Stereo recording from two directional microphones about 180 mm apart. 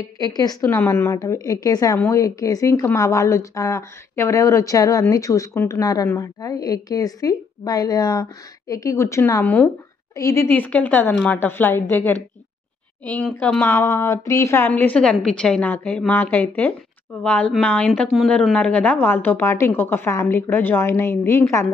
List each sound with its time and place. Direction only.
0.0 s a woman's voice: 20° left (ahead or behind)